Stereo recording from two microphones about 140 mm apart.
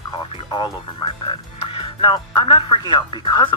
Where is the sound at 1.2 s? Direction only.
35° left (ahead or behind).